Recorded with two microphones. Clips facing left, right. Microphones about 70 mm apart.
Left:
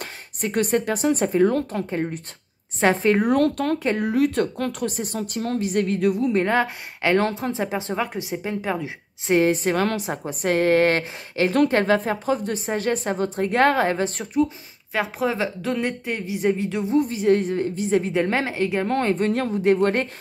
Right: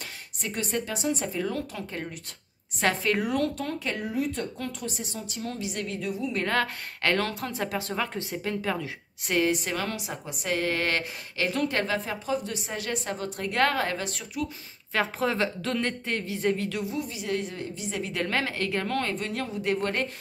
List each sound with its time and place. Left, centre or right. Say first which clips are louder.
0.0 s speech: left 8 dB; left
1.9 s a woman's voice: left 10 dB; left
6.4 s a woman's voice: left 5 dB; centre
7.2 s a woman's voice: left 7 dB; left
11.7 s a woman's voice: left 9 dB; left
14.9 s a woman's voice: left 3 dB; centre
16.9 s a woman's voice: left 12 dB; left
18.1 s a woman's voice: left 6 dB; left
18.9 s a woman's voice: left 8 dB; left